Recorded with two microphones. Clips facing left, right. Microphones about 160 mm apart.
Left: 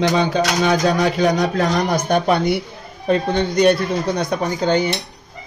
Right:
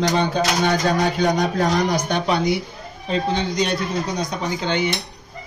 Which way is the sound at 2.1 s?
50° left (ahead or behind).